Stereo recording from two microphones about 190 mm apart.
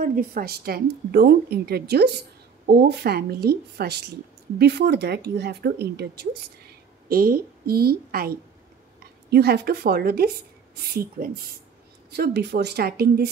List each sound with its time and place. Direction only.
0.0 s a woman's voice: 50° right (ahead or behind)
9.3 s a woman's voice: 55° right (ahead or behind)